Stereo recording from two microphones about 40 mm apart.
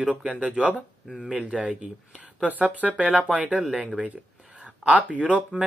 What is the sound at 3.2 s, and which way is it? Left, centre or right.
Speech, right.